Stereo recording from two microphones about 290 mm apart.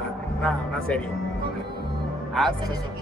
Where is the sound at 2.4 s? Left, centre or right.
Centre.